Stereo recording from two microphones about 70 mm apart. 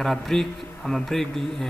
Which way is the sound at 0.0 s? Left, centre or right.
Centre.